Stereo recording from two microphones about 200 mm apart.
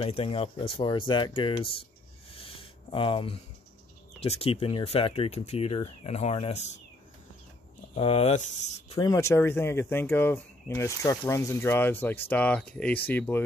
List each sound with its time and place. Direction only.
0.0 s speech: 30° left (ahead or behind)
2.9 s speech: 25° left (ahead or behind)
7.9 s speech: 30° left (ahead or behind)
8.8 s speech: 20° left (ahead or behind)